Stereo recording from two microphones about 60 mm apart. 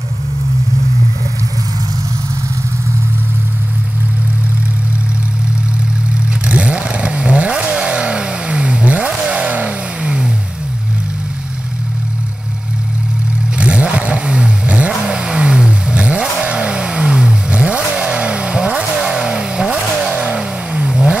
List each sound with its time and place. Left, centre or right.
6.4 s vehicle: centre
13.6 s vehicle: centre